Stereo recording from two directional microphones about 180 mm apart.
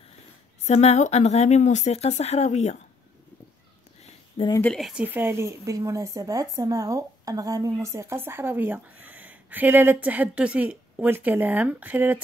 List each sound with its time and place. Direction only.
0.7 s speech: 40° left (ahead or behind)
4.6 s speech: 5° left (ahead or behind)